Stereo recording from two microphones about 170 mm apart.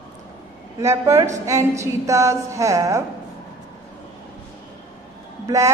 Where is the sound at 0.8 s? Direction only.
20° right (ahead or behind).